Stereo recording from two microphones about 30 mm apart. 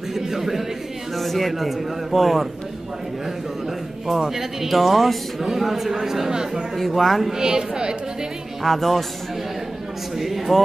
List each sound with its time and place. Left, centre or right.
0.1 s a sound: centre
1.1 s a man's voice: centre
4.4 s a man's voice: centre
6.8 s a man's voice: centre
7.2 s a woman's voice: right
8.6 s a man's voice: centre
10.1 s a man's voice: centre